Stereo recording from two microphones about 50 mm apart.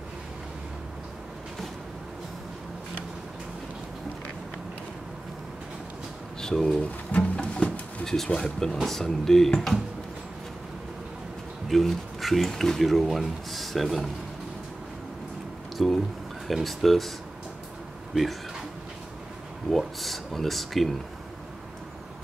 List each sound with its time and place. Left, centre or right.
6.4 s speech: centre
7.1 s music: left
8.0 s speech: centre
11.7 s speech: centre
15.8 s speech: centre
19.8 s speech: centre